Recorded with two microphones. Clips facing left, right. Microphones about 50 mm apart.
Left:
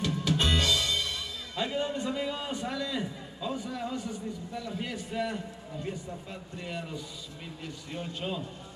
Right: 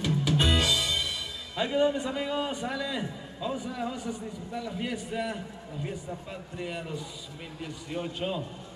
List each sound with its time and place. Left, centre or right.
0.0 s speech: centre
6.6 s a man's voice: centre